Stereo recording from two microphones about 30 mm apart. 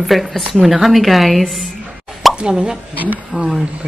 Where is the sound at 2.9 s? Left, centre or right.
Right.